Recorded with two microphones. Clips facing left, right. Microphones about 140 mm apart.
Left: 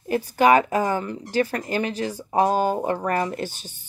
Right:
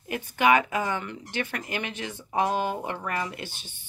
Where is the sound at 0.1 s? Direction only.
35° left (ahead or behind).